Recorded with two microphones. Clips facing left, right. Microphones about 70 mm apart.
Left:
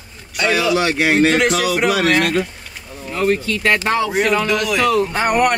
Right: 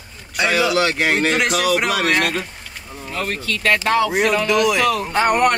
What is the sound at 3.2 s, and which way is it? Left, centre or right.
Speech, centre.